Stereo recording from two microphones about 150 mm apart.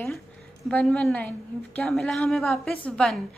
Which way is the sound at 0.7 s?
10° left (ahead or behind).